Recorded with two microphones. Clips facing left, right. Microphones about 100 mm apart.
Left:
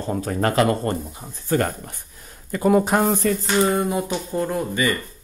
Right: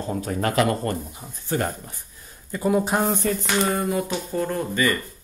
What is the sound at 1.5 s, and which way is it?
Speech, 55° left (ahead or behind).